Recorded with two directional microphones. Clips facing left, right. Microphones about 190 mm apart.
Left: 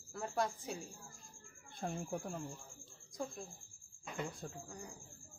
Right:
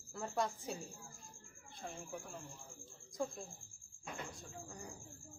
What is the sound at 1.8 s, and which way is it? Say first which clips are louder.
Speech: left 7 dB; 55° left (ahead or behind).